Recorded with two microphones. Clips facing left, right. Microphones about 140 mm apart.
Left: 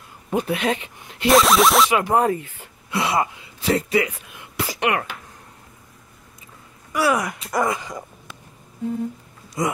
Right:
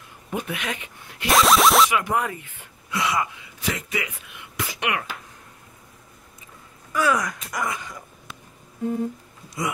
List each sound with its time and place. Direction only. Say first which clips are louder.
0.3 s speech: left 7 dB; 35° left (ahead or behind)
1.3 s music: left 2 dB; centre (ahead or behind)
1.9 s speech: left 6 dB; 35° left (ahead or behind)
6.9 s speech: left 2 dB; 25° left (ahead or behind)
9.6 s speech: left 4 dB; 45° left (ahead or behind)